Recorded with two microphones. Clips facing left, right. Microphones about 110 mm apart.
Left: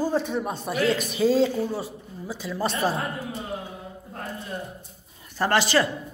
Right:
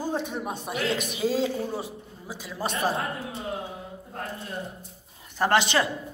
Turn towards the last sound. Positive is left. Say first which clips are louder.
# left 1 dB
turn(degrees=-20)  # may be behind; listen again after turning